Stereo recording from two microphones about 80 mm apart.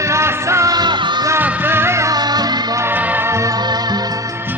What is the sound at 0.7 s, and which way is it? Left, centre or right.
Music, right.